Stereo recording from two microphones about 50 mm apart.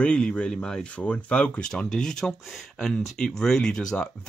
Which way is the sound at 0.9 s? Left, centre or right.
Left.